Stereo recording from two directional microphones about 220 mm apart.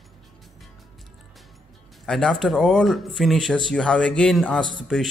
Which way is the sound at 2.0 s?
Centre (ahead or behind).